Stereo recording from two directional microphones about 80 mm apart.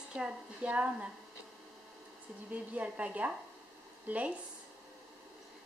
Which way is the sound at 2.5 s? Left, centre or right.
Centre.